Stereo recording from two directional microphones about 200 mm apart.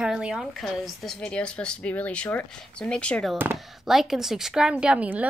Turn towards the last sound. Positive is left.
turn(degrees=-5)  # may be behind; listen again after turning